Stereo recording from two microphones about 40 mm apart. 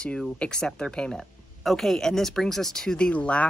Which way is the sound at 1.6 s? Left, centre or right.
Centre.